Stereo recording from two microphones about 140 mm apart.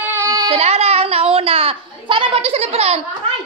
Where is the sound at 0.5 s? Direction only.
50° right (ahead or behind).